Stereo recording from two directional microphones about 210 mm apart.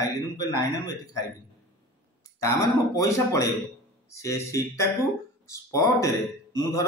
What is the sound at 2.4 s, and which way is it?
A man's voice, 15° left (ahead or behind).